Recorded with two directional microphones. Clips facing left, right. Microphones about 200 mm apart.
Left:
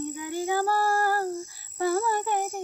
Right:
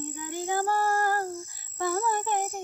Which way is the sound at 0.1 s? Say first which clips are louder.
Left 1 dB; 10° left (ahead or behind).